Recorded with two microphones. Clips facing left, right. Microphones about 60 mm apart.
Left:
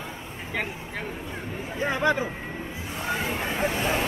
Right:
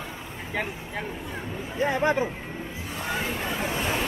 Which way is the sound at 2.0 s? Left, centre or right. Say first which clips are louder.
Left 1 dB; right.